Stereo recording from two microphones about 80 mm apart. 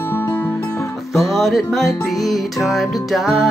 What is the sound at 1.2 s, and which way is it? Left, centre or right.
Music, centre.